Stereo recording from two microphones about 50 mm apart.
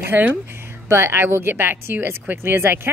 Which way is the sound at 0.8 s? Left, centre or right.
Right.